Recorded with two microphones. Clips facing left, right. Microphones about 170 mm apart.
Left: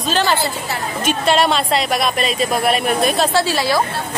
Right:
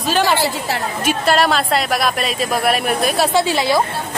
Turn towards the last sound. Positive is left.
turn(degrees=-20)  # may be behind; listen again after turning